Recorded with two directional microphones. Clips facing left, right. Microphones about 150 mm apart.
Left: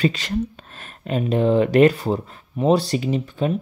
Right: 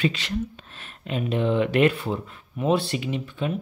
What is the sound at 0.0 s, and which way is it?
Speech, 40° left (ahead or behind).